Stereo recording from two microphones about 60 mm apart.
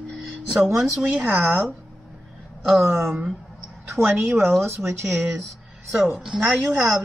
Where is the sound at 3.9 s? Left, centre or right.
Right.